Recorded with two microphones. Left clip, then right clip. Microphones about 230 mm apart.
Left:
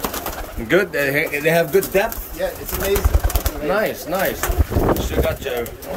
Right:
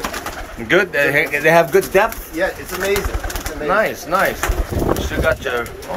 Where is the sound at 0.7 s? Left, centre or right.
Centre.